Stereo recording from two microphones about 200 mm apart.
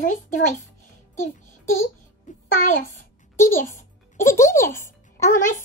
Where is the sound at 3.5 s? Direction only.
40° left (ahead or behind).